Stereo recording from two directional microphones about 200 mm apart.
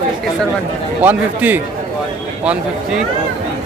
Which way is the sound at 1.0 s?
10° right (ahead or behind).